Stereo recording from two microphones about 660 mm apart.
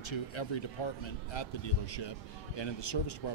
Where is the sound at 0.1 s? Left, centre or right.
Left.